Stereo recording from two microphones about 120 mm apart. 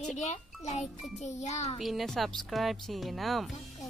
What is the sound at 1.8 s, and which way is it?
Speech, centre (ahead or behind).